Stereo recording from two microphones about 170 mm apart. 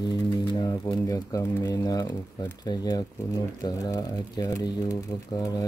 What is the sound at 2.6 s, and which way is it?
Speech, 25° left (ahead or behind).